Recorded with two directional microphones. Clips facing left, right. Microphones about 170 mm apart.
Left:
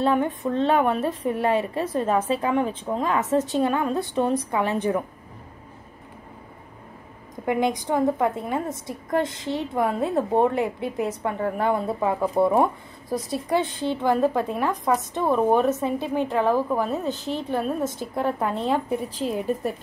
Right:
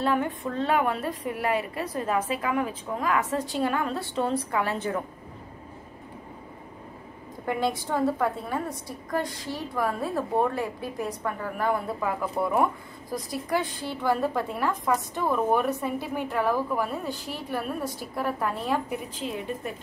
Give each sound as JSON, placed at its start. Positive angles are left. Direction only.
{"t": 0.0, "sound": "a woman's voice", "side_deg": 25}
{"t": 7.4, "sound": "a woman's voice", "side_deg": 15}
{"t": 19.1, "sound": "a woman's voice", "side_deg": 40}